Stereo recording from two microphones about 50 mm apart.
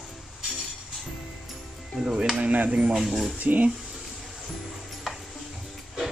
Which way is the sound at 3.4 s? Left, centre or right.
Right.